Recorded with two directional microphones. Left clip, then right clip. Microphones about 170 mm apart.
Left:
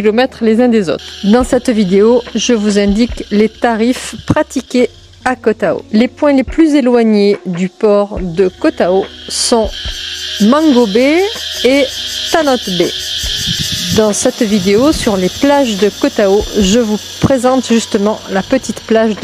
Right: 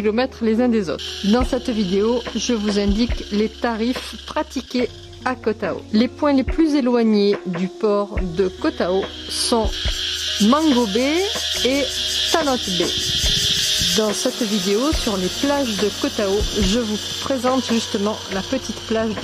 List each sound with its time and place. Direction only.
0.0 s speech: 30° left (ahead or behind)
13.9 s speech: 35° left (ahead or behind)